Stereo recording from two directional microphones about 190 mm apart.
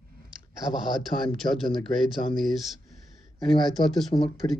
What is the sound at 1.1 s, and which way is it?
Speech, 45° left (ahead or behind).